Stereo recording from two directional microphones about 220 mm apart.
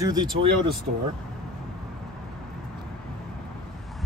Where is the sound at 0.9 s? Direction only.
35° right (ahead or behind).